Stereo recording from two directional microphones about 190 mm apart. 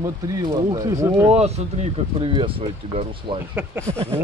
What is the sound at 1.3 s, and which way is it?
Speech, 35° right (ahead or behind).